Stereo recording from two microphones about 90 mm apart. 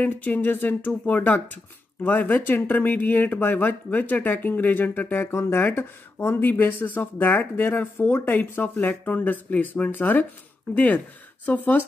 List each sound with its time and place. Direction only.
0.0 s speech: 15° left (ahead or behind)